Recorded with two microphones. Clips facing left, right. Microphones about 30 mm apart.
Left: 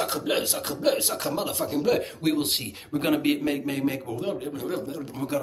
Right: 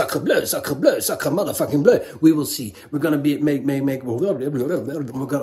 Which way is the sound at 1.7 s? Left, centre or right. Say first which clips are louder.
Right 10 dB; centre.